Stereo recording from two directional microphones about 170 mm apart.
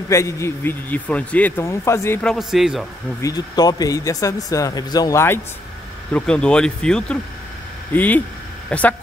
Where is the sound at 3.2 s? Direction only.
20° left (ahead or behind).